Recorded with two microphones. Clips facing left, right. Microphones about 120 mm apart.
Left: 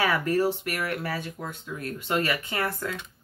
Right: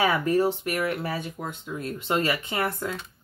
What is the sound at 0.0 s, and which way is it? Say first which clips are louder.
Speech: right 2 dB; 20° right (ahead or behind).